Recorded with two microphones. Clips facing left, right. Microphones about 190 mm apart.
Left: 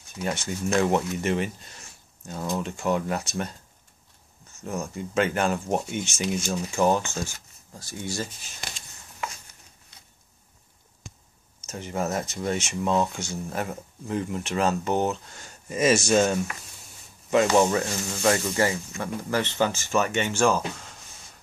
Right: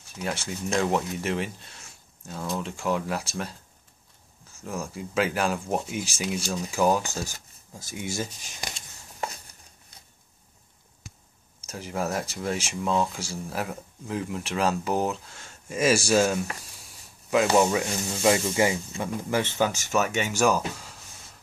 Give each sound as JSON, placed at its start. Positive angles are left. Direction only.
{"t": 0.1, "sound": "speech", "side_deg": 0}
{"t": 4.6, "sound": "speech", "side_deg": 0}
{"t": 7.9, "sound": "speech", "side_deg": -15}
{"t": 11.7, "sound": "speech", "side_deg": 0}